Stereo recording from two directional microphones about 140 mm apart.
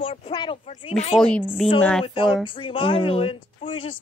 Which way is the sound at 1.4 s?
5° right (ahead or behind).